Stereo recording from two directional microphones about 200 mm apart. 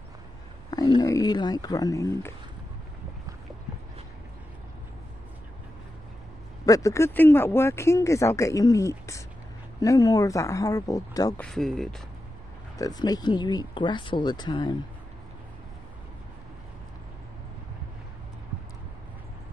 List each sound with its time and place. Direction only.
0.7 s speech: 20° left (ahead or behind)
6.6 s speech: 15° left (ahead or behind)
11.4 s speech: centre (ahead or behind)
12.7 s speech: 20° left (ahead or behind)